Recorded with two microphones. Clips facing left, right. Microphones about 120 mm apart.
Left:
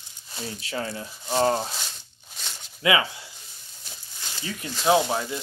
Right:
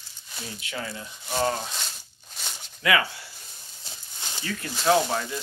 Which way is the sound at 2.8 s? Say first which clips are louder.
Left 1 dB; 20° left (ahead or behind).